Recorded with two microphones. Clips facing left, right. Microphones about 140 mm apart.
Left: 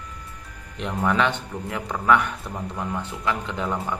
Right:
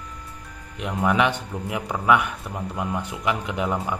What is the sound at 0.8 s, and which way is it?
Speech, 5° right (ahead or behind).